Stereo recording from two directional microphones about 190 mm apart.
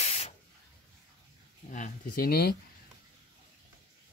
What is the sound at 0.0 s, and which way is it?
Spray, 35° left (ahead or behind).